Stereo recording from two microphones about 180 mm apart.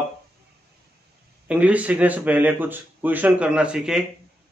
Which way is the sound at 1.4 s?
10° right (ahead or behind).